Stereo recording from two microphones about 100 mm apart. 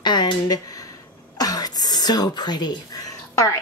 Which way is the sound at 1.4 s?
40° left (ahead or behind).